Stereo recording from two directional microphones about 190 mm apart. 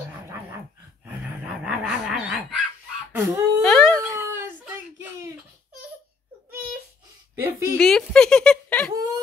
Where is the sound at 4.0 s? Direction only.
15° right (ahead or behind).